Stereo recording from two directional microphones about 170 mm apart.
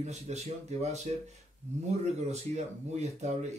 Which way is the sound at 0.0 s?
40° right (ahead or behind).